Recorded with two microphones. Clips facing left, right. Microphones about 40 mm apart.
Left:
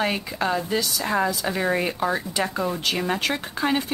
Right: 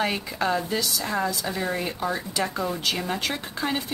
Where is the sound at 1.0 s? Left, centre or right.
Centre.